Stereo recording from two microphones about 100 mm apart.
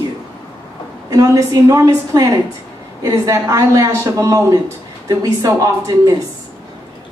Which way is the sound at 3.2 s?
35° right (ahead or behind).